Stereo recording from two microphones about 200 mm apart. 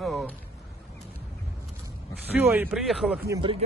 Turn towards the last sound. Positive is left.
turn(degrees=-15)  # may be behind; listen again after turning